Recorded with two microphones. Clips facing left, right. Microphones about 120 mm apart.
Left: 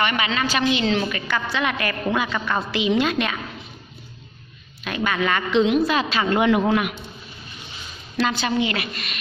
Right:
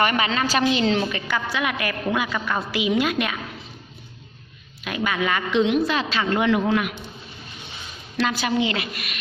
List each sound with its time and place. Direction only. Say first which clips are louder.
0.0 s a woman's voice: right 1 dB; 35° right (ahead or behind)
1.0 s a woman's voice: even; 15° right (ahead or behind)
4.8 s a woman's voice: left 1 dB; 10° right (ahead or behind); by 6.9 s 25° left (ahead or behind)
8.2 s a woman's voice: left 1 dB; 5° right (ahead or behind)
8.5 s a woman's voice: even; 20° right (ahead or behind)